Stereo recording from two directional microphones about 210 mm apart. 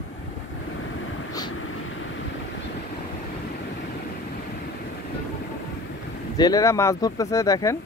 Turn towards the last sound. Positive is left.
turn(degrees=15)  # may be behind; listen again after turning